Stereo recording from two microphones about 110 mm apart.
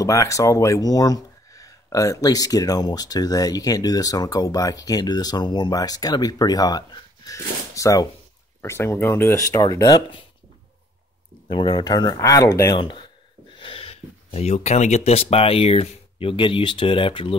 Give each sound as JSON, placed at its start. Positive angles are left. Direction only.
{"t": 0.0, "sound": "speech", "side_deg": 30}
{"t": 9.5, "sound": "speech", "side_deg": 35}
{"t": 11.4, "sound": "speech", "side_deg": 45}
{"t": 12.7, "sound": "speech", "side_deg": 45}
{"t": 13.6, "sound": "speech", "side_deg": 55}